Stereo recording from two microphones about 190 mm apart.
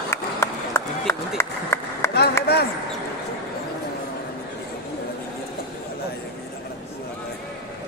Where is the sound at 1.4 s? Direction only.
15° left (ahead or behind).